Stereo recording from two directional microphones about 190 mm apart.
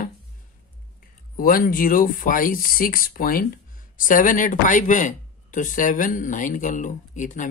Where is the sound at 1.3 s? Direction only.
50° left (ahead or behind).